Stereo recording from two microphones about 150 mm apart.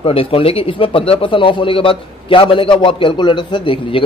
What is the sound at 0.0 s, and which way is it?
Speech, 40° left (ahead or behind).